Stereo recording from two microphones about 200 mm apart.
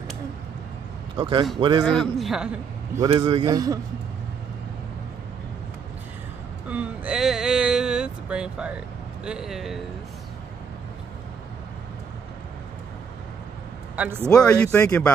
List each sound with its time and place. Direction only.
1.1 s a man's voice: 25° right (ahead or behind)
1.9 s a man's voice: centre (ahead or behind)
3.0 s a man's voice: 25° right (ahead or behind)
6.7 s vehicle: 5° right (ahead or behind)
13.9 s a man's voice: 10° right (ahead or behind)
14.3 s speech: 5° left (ahead or behind)